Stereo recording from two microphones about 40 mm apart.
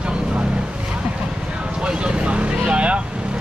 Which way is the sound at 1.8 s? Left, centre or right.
Right.